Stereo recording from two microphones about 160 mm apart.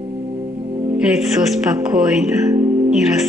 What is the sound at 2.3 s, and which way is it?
Music, 15° right (ahead or behind).